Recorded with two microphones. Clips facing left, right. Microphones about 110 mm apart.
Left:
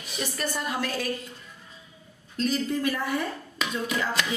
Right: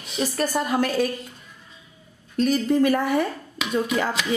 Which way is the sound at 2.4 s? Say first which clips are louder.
Right 7 dB; 55° right (ahead or behind).